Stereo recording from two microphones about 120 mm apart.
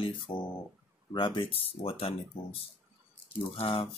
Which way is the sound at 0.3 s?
45° left (ahead or behind).